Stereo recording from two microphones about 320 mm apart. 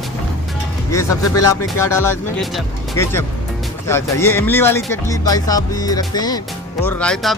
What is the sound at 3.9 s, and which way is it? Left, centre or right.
Speech, centre.